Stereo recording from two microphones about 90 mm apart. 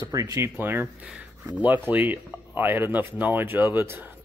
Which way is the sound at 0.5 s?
25° right (ahead or behind).